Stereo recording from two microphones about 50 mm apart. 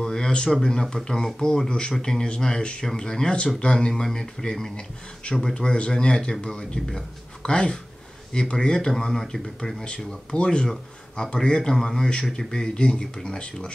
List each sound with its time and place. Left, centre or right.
0.0 s a sound: centre
0.6 s speech: centre
9.8 s speech: left